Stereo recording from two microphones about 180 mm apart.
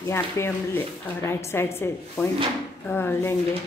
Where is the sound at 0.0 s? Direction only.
15° left (ahead or behind).